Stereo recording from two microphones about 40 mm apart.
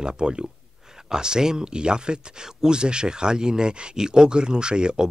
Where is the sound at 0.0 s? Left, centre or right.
Centre.